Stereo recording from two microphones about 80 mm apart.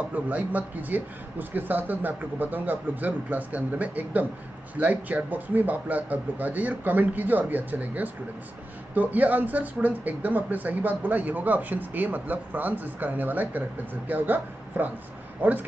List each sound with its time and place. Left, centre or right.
0.1 s speech: centre